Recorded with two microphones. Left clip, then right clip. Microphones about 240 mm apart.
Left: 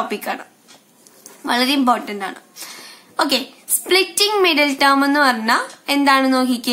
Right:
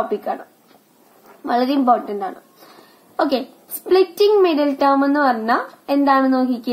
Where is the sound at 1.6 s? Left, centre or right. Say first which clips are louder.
Right 1 dB; left.